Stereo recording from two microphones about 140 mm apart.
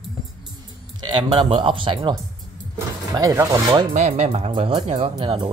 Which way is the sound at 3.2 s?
25° right (ahead or behind).